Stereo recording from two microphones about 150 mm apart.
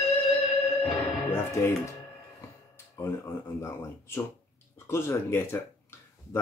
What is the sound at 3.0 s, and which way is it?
Speech, 20° left (ahead or behind).